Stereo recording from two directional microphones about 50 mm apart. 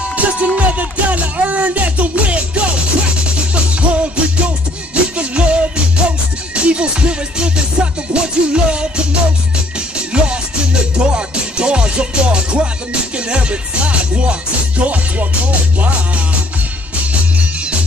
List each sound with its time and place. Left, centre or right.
0.1 s music: right